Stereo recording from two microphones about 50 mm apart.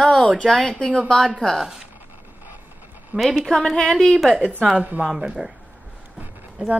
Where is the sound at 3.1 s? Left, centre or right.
Right.